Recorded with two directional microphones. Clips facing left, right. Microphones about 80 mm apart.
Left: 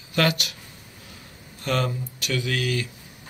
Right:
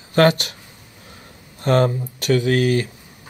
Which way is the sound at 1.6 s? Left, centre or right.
Right.